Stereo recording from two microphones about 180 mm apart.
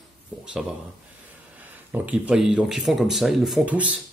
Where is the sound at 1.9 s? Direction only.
10° right (ahead or behind).